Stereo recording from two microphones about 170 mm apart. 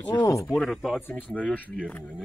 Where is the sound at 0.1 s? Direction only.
20° left (ahead or behind).